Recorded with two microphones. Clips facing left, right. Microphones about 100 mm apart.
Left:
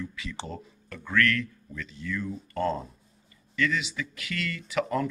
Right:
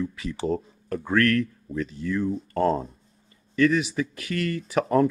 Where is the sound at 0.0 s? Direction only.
35° right (ahead or behind).